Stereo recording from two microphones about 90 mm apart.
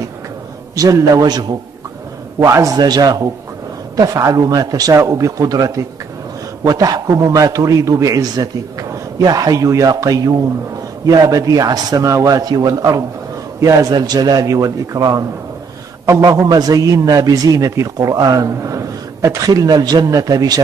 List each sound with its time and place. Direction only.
0.7 s a man's voice: 40° right (ahead or behind)
2.4 s a man's voice: 40° right (ahead or behind)